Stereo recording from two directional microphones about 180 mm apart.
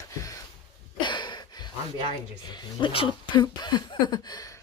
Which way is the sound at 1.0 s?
25° left (ahead or behind).